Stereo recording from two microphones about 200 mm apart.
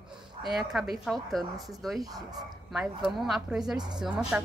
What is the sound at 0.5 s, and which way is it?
A woman's voice, centre (ahead or behind).